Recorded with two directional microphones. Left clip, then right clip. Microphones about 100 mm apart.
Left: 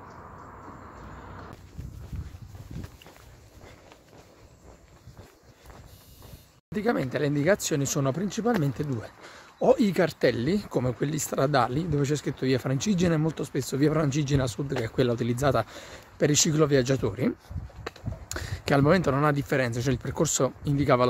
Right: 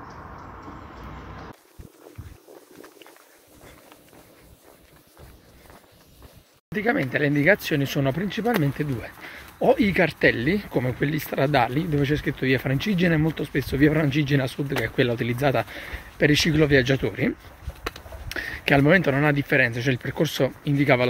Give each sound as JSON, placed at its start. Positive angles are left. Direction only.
{"t": 6.7, "sound": "speech", "side_deg": 45}
{"t": 14.1, "sound": "speech", "side_deg": 60}
{"t": 18.3, "sound": "speech", "side_deg": 55}